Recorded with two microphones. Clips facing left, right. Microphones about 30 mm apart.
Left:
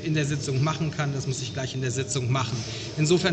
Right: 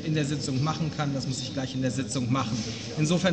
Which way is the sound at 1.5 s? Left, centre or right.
Left.